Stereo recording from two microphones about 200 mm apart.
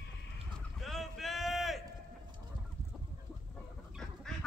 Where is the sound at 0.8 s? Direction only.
Centre (ahead or behind).